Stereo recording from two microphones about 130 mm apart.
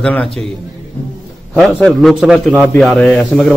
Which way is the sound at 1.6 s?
5° left (ahead or behind).